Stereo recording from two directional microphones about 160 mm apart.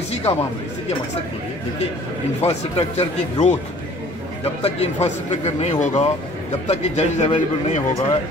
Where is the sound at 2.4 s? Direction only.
40° left (ahead or behind).